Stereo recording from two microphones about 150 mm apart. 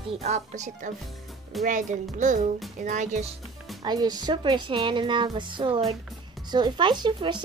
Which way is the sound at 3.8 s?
25° right (ahead or behind).